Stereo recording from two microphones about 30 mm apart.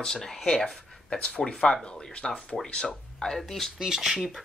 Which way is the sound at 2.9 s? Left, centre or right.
Left.